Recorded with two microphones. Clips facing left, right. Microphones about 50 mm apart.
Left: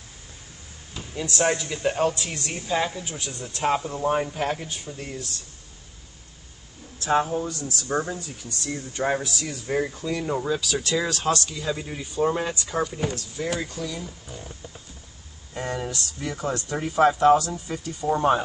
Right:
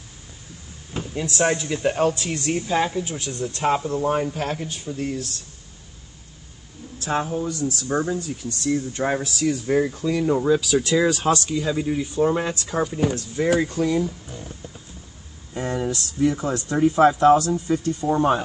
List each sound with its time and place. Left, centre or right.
1.1 s speech: centre
4.8 s speech: centre
7.1 s speech: centre
7.4 s speech: right
7.9 s speech: centre
13.7 s speech: right
14.2 s speech: centre
15.5 s speech: centre